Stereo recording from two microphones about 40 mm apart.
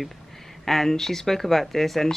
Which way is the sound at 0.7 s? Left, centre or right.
Centre.